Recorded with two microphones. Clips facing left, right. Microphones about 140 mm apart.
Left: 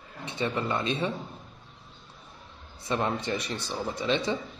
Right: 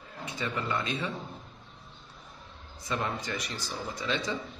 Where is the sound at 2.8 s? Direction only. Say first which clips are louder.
Left 4 dB; 25° left (ahead or behind).